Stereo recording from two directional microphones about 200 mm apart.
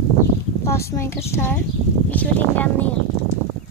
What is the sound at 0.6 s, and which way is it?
Speech, 15° left (ahead or behind).